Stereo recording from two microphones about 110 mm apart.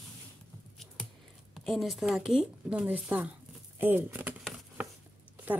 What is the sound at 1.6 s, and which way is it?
Speech, centre (ahead or behind).